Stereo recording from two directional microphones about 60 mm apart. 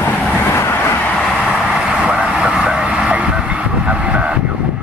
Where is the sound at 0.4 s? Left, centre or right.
Left.